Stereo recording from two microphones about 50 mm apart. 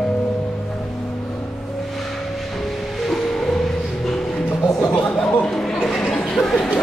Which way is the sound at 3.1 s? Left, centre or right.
Centre.